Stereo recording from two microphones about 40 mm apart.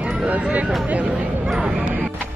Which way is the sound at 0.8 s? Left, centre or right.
Right.